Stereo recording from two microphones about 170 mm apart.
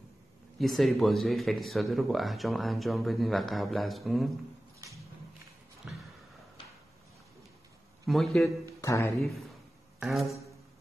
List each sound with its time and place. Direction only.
0.6 s speech: centre (ahead or behind)
4.7 s music: 20° right (ahead or behind)
5.8 s a sound: 5° right (ahead or behind)
8.1 s speech: centre (ahead or behind)
8.8 s speech: 20° left (ahead or behind)
9.9 s a sound: centre (ahead or behind)